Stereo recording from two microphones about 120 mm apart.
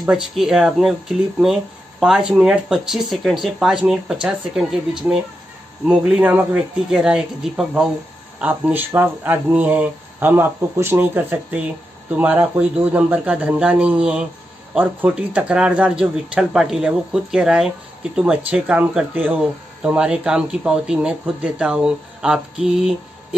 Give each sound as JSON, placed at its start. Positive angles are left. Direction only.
{"t": 0.0, "sound": "speech", "side_deg": -5}